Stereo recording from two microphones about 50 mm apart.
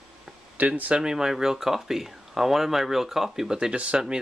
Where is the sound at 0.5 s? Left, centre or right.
Right.